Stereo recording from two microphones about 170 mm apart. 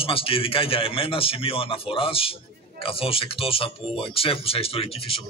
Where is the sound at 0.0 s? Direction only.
30° left (ahead or behind).